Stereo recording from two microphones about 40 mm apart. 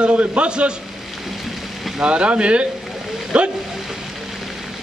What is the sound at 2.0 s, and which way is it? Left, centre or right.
A man's voice, right.